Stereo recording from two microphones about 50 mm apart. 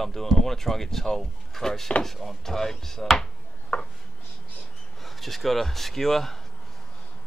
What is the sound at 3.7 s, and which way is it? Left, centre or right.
Chopping, centre.